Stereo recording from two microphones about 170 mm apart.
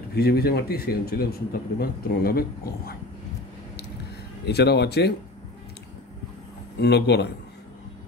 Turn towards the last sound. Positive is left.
turn(degrees=75)  # may be behind; listen again after turning